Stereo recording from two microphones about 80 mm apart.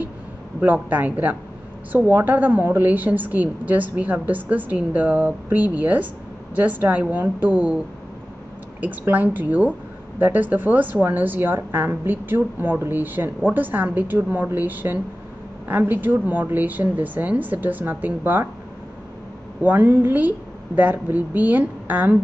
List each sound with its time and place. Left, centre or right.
0.8 s speech: right
8.8 s speech: right
19.6 s speech: right